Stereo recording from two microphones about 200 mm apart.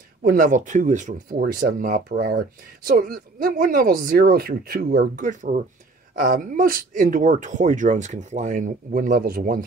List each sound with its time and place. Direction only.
0.2 s speech: 45° right (ahead or behind)